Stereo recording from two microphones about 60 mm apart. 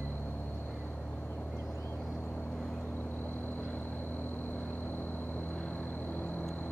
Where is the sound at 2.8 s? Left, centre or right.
Left.